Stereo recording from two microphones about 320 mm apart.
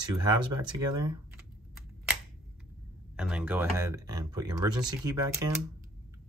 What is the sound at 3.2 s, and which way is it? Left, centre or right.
Speech, centre.